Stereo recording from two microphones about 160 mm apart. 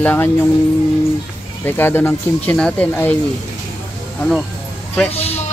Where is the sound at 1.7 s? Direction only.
15° left (ahead or behind).